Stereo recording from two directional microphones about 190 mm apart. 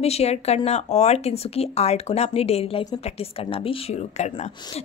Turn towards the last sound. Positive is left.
turn(degrees=30)  # may be behind; listen again after turning